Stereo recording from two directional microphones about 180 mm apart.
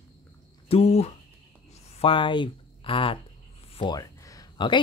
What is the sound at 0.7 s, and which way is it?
Speech, 35° left (ahead or behind).